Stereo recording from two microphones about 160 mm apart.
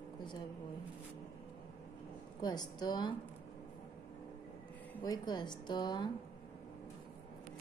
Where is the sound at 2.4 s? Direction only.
25° left (ahead or behind).